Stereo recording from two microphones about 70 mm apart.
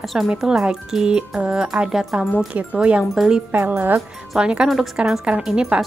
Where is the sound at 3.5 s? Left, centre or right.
Right.